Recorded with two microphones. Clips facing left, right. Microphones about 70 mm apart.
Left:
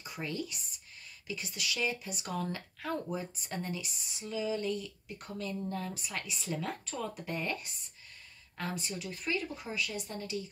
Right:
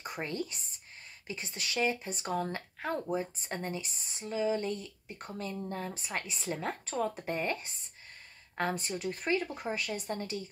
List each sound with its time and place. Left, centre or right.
0.0 s speech: right